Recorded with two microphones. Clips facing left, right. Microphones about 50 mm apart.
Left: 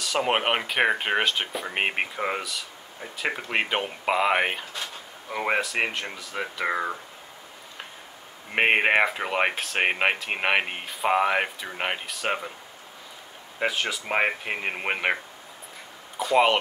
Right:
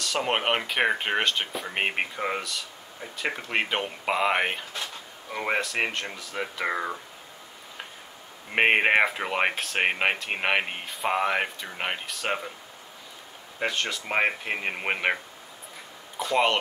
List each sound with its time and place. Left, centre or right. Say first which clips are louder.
0.0 s speech: left 2 dB; centre
8.5 s speech: even; centre
13.6 s speech: left 2 dB; centre
16.2 s speech: left 3 dB; centre